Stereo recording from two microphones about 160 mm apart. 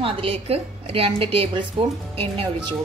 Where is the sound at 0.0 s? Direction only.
35° right (ahead or behind).